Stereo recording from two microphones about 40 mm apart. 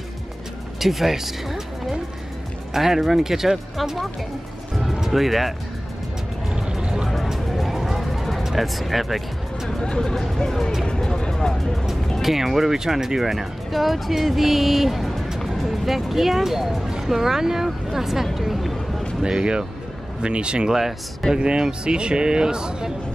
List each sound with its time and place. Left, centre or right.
0.7 s speech: centre
5.1 s speech: centre
6.5 s music: right
7.1 s music: centre
9.7 s speech: centre
10.9 s vehicle: centre
12.2 s speech: centre
15.2 s music: centre
15.5 s speech: centre
19.2 s a man's voice: right